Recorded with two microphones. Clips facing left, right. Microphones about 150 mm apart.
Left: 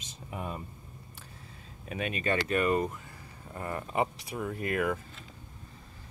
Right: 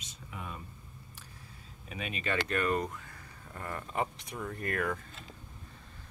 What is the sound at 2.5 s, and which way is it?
Speech, 5° left (ahead or behind).